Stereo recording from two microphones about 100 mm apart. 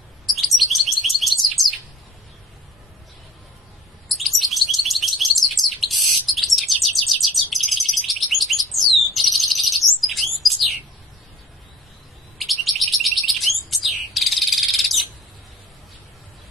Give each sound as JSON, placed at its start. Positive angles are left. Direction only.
{"t": 0.3, "sound": "chirp", "side_deg": 0}
{"t": 4.1, "sound": "chirp", "side_deg": 0}
{"t": 9.1, "sound": "bird", "side_deg": 0}
{"t": 12.4, "sound": "chirp", "side_deg": 0}
{"t": 13.7, "sound": "bird", "side_deg": 0}